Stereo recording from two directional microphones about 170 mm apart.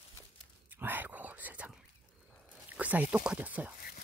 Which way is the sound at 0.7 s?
10° right (ahead or behind).